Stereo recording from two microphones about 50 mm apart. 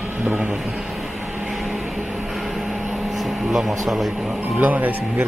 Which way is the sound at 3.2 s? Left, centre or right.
Centre.